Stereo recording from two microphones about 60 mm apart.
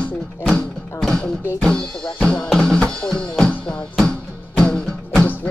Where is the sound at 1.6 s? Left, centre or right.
Centre.